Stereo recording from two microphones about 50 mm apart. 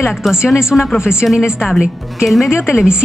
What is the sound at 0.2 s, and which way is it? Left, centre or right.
Speech, centre.